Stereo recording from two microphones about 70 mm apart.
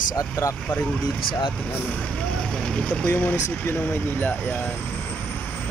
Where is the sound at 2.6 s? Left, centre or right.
Centre.